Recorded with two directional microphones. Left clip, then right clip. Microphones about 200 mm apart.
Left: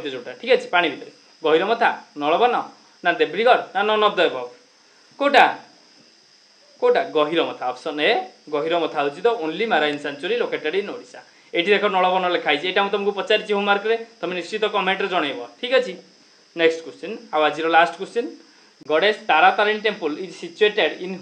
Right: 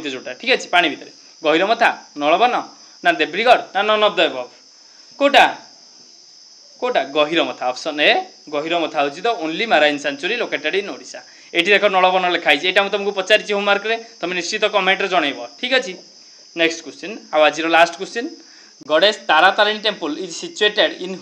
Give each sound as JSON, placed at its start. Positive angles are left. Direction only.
{"t": 0.0, "sound": "speech", "side_deg": -25}
{"t": 6.8, "sound": "speech", "side_deg": -15}